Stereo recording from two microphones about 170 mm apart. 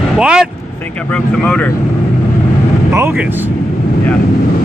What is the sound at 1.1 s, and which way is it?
Speech, 5° left (ahead or behind).